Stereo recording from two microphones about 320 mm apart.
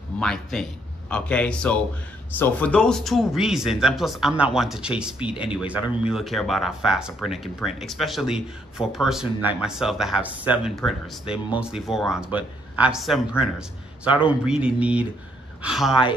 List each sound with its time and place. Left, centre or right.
0.2 s speech: centre